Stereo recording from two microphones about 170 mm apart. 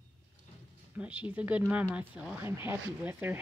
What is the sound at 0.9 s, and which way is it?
Speech, 10° right (ahead or behind).